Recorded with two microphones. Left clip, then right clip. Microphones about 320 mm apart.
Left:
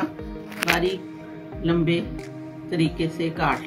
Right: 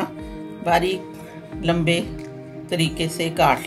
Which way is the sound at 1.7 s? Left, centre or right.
Right.